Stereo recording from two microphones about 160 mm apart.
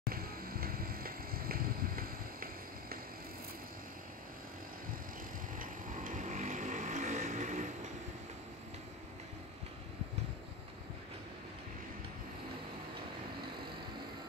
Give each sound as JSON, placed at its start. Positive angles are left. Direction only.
{"t": 0.1, "sound": "vehicle", "side_deg": -65}
{"t": 5.6, "sound": "vehicle", "side_deg": -55}